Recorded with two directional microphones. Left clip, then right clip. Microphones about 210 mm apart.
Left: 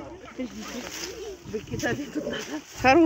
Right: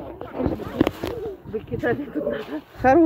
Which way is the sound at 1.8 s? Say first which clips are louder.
Right 6 dB; 60° left (ahead or behind).